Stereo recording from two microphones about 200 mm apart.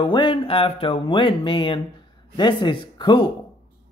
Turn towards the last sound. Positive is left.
turn(degrees=20)  # may be behind; listen again after turning